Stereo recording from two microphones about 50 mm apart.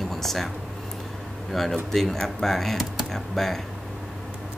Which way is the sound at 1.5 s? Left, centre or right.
Centre.